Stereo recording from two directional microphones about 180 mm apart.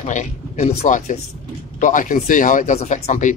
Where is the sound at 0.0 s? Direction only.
40° left (ahead or behind).